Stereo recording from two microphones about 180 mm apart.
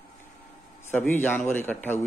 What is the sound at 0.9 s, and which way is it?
Speech, 10° left (ahead or behind).